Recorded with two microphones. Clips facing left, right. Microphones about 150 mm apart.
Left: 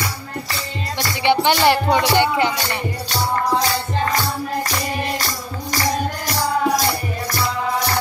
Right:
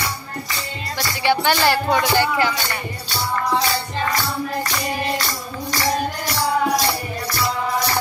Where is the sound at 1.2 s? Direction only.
25° left (ahead or behind).